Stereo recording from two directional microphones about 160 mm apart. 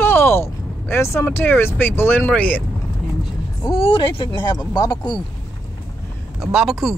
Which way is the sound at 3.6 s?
35° left (ahead or behind).